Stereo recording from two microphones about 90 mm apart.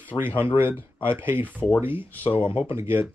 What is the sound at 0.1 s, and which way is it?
Speech, 35° left (ahead or behind).